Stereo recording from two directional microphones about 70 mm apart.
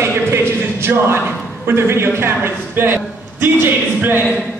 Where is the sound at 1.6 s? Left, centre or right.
Right.